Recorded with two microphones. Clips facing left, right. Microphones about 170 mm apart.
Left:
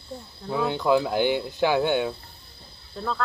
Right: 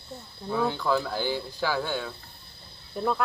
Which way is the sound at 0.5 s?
15° left (ahead or behind).